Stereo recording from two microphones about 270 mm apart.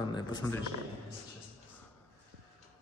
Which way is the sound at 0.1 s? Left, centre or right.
Centre.